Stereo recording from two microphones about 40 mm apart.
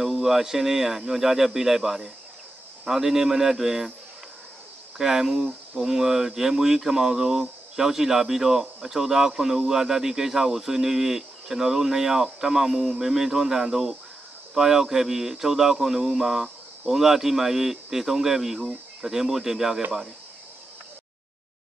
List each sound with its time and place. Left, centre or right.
0.0 s speech: centre
4.9 s speech: centre